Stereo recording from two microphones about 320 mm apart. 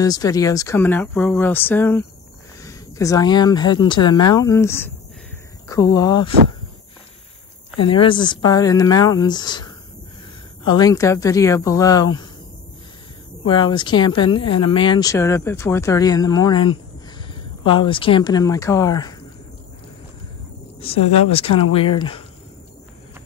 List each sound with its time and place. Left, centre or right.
0.0 s speech: centre
7.8 s speech: centre
13.5 s speech: centre
20.8 s speech: centre